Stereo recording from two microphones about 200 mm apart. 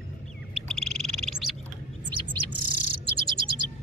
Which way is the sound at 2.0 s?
25° right (ahead or behind).